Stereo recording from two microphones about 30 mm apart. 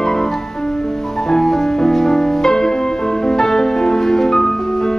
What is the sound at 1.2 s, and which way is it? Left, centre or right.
Music, centre.